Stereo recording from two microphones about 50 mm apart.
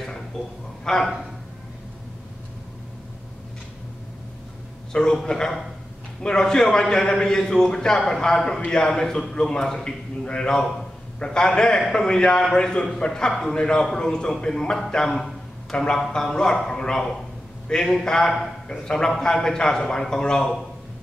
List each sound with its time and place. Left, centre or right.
0.8 s a man's voice: centre
4.9 s a man's voice: centre
10.6 s a man's voice: centre
11.1 s a man's voice: centre
14.9 s a sound: centre
16.1 s a man's voice: centre